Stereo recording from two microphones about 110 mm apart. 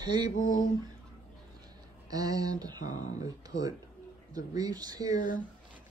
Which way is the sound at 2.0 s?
35° right (ahead or behind).